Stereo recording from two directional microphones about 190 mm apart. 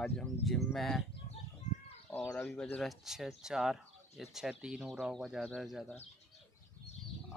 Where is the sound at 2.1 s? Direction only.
10° left (ahead or behind).